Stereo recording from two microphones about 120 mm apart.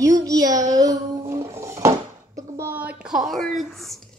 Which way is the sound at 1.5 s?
25° right (ahead or behind).